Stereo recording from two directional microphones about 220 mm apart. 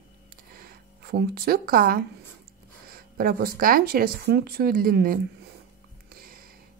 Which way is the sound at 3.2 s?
45° right (ahead or behind).